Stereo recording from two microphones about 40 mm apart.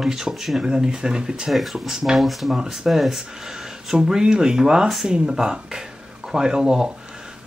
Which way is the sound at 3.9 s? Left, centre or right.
Centre.